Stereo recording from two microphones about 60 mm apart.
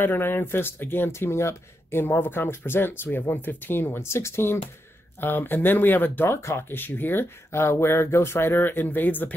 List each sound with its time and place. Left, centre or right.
0.0 s speech: left
5.2 s speech: left
6.3 s speech: left